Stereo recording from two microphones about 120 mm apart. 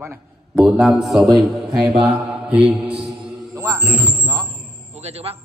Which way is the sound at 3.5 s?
25° right (ahead or behind).